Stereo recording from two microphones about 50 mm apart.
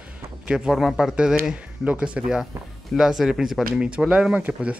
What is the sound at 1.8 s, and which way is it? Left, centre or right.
Speech, right.